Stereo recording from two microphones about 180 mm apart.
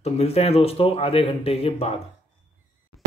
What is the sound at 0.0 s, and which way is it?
Speech, 35° left (ahead or behind).